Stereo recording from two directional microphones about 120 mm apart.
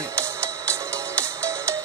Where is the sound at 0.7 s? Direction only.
25° right (ahead or behind).